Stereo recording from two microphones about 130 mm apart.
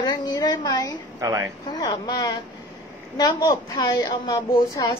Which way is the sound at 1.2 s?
30° right (ahead or behind).